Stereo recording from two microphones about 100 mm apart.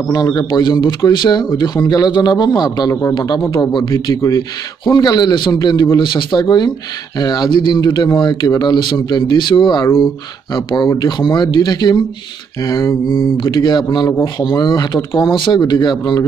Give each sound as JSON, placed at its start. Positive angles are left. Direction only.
{"t": 0.1, "sound": "a man's voice", "side_deg": 40}
{"t": 2.9, "sound": "a man's voice", "side_deg": 30}
{"t": 12.6, "sound": "mantra", "side_deg": 30}
{"t": 13.4, "sound": "a man's voice", "side_deg": 45}